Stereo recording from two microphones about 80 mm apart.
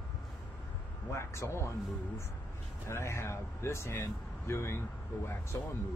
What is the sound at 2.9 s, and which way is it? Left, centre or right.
Speech, left.